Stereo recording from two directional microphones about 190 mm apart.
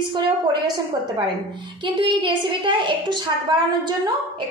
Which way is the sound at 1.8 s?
25° right (ahead or behind).